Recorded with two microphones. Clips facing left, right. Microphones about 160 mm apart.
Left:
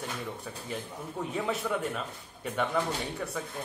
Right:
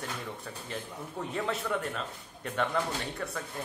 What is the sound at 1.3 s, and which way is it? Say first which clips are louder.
Speech: left 1 dB; 10° left (ahead or behind).